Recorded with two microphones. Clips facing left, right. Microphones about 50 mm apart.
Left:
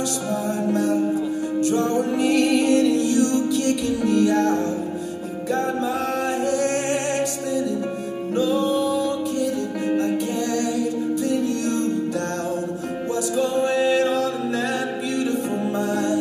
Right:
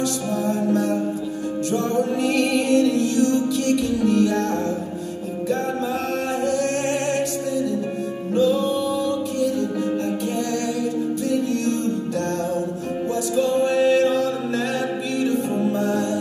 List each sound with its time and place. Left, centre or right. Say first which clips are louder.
2.0 s music: left 1 dB; centre
6.4 s music: right 1 dB; centre
13.4 s music: right 2 dB; centre
15.3 s music: right 2 dB; centre